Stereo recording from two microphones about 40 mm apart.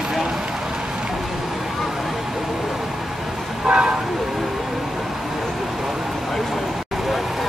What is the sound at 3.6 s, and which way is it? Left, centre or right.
Vehicle, right.